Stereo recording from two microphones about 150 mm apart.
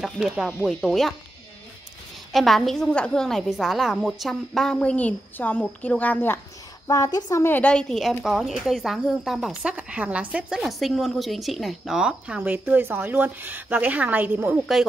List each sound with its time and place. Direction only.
0.0 s a woman's voice: centre (ahead or behind)
2.3 s a woman's voice: centre (ahead or behind)
6.9 s a woman's voice: 25° left (ahead or behind); by 14.6 s 10° right (ahead or behind)